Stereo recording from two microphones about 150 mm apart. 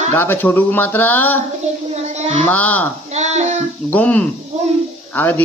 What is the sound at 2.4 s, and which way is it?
Speech, 10° left (ahead or behind).